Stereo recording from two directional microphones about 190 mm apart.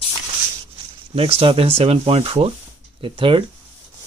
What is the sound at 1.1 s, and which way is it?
Speech, 30° right (ahead or behind).